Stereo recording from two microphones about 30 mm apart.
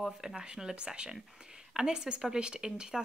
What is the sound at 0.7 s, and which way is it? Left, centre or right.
Speech, right.